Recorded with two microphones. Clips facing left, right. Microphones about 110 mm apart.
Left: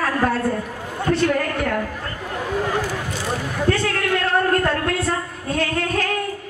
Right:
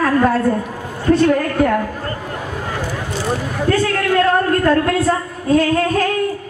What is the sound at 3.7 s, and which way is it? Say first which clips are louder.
Speech: right 5 dB; 40° right (ahead or behind).